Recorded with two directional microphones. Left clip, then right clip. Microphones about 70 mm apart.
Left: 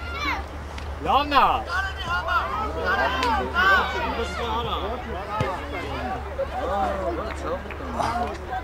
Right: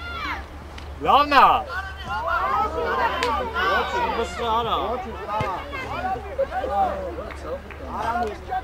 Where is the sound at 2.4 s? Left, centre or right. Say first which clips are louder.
Right 5 dB; right.